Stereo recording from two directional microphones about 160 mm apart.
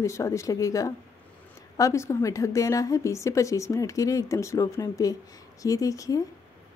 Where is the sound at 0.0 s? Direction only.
20° left (ahead or behind).